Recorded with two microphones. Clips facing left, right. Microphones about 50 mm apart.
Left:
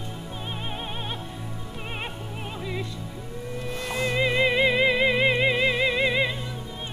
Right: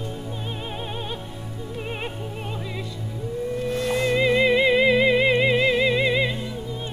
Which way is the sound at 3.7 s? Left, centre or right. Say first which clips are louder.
Right 4 dB; centre.